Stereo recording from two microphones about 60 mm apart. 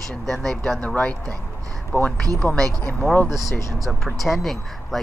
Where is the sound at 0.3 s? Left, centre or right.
Centre.